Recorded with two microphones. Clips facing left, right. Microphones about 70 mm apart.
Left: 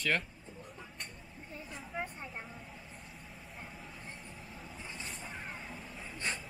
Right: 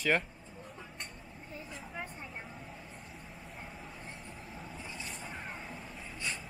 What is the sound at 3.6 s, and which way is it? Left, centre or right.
Vehicle, centre.